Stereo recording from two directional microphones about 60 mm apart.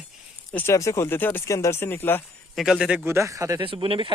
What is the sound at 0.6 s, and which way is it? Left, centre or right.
Speech, left.